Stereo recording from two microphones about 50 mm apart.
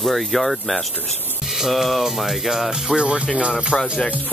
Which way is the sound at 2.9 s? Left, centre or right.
Centre.